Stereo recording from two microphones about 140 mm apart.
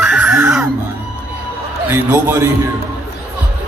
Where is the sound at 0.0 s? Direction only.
5° right (ahead or behind).